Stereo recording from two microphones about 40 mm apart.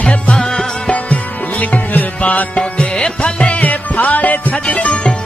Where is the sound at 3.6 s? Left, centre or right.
Left.